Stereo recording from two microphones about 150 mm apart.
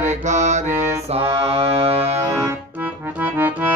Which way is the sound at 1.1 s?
40° right (ahead or behind).